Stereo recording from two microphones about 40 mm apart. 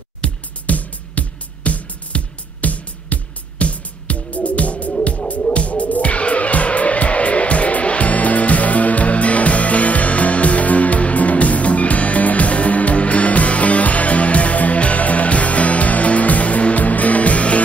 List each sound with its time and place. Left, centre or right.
0.2 s music: left